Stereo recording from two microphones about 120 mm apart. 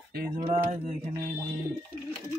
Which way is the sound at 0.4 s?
65° right (ahead or behind).